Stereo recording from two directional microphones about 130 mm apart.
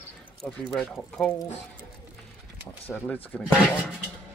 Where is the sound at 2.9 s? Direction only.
5° left (ahead or behind).